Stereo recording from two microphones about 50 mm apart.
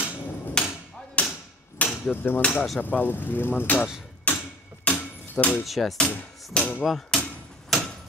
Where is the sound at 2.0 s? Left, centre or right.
Left.